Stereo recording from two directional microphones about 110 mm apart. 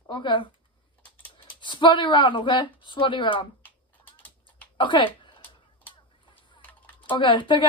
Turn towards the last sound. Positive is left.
turn(degrees=45)  # may be behind; listen again after turning